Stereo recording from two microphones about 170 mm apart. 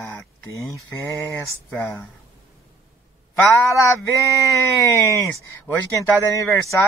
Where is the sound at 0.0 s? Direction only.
15° left (ahead or behind).